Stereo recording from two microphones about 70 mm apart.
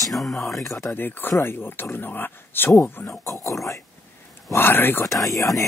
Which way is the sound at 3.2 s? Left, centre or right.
Left.